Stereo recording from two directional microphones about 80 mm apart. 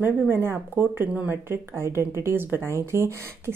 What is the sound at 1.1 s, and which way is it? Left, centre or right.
Speech, centre.